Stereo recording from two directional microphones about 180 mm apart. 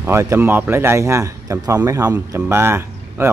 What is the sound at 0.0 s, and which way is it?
Speech, 15° right (ahead or behind).